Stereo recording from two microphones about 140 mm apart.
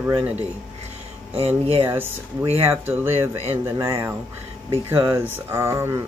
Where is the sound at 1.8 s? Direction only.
15° right (ahead or behind).